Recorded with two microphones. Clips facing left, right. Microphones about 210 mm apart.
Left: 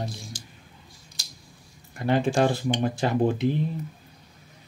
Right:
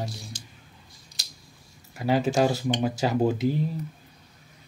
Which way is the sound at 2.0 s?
5° right (ahead or behind).